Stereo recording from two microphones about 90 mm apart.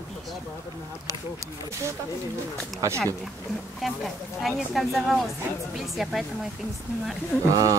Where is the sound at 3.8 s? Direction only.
Centre (ahead or behind).